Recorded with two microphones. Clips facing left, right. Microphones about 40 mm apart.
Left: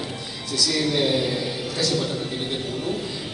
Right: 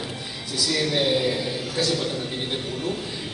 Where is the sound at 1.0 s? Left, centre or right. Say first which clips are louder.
Even; centre.